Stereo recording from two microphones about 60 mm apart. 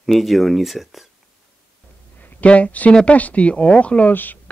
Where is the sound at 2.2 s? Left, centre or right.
Left.